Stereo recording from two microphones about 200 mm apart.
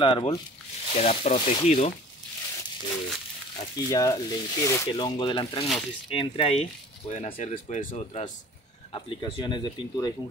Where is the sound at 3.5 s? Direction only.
20° left (ahead or behind); by 8.3 s 35° left (ahead or behind).